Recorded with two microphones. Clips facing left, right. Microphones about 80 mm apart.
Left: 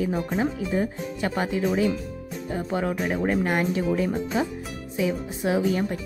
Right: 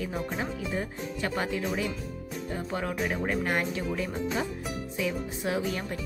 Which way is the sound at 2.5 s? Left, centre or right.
Centre.